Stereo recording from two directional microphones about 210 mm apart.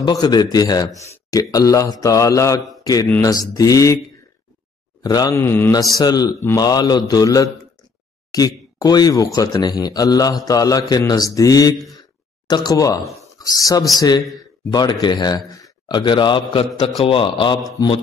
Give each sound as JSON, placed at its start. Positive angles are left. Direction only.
{"t": 0.0, "sound": "a man's voice", "side_deg": 20}
{"t": 5.0, "sound": "a man's voice", "side_deg": 15}